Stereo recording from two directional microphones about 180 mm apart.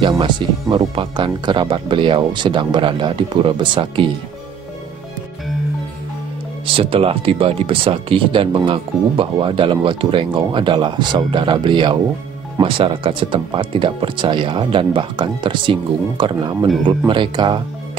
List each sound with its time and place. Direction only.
0.0 s speech: 25° right (ahead or behind)
6.6 s speech: 30° right (ahead or behind)